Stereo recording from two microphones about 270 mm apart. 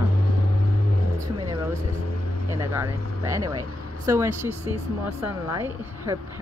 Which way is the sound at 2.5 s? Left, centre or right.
Centre.